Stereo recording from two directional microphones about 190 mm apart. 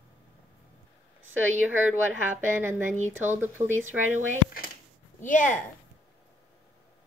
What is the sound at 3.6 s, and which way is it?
Speech, 35° right (ahead or behind).